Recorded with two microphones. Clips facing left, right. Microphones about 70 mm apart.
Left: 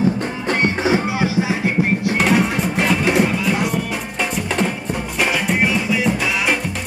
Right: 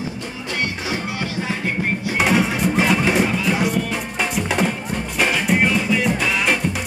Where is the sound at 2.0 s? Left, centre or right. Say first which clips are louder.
Right 1 dB; centre.